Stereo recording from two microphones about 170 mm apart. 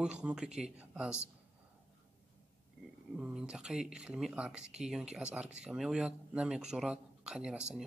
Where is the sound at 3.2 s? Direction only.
5° right (ahead or behind).